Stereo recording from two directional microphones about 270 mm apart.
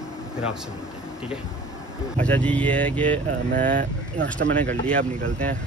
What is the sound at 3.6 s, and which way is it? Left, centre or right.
Speech, right.